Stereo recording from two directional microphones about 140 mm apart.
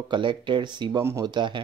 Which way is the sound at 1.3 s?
35° right (ahead or behind).